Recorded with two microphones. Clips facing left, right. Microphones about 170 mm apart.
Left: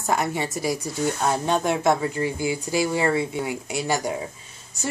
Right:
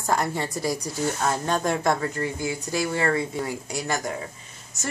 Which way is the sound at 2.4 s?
25° left (ahead or behind).